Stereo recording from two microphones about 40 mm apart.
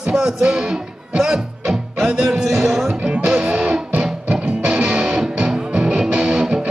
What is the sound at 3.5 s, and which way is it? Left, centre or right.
Music, right.